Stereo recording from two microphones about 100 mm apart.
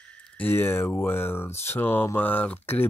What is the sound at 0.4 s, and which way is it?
Speech, 20° left (ahead or behind).